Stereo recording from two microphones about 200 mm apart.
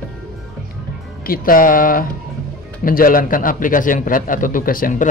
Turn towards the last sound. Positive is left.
turn(degrees=45)  # may be behind; listen again after turning